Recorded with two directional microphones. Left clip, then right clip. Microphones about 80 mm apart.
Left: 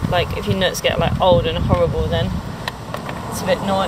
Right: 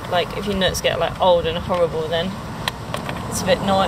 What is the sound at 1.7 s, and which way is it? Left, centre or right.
Speech, centre.